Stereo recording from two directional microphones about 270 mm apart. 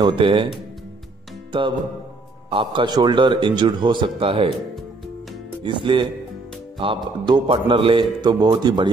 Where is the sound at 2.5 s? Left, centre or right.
Centre.